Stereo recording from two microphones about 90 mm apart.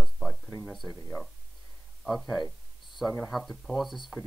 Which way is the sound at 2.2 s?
Centre (ahead or behind).